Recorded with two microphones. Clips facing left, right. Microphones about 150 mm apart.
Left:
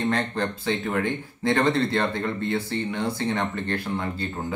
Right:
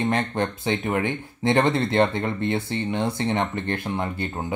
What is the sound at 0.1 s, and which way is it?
Speech, 20° right (ahead or behind).